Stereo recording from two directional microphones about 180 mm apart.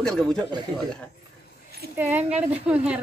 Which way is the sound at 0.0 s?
Centre (ahead or behind).